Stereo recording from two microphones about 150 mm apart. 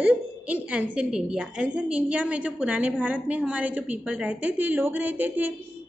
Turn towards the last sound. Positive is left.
turn(degrees=-10)  # may be behind; listen again after turning